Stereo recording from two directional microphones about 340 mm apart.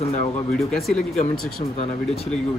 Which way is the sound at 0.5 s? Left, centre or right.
Centre.